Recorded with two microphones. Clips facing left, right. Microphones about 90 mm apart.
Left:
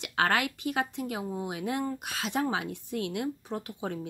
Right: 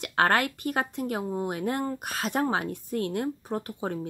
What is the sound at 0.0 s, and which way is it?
Speech, 45° right (ahead or behind).